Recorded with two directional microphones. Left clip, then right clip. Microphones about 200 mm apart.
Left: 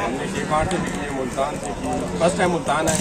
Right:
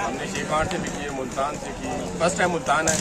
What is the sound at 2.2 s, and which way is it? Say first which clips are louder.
Speech: left 2 dB; 10° right (ahead or behind).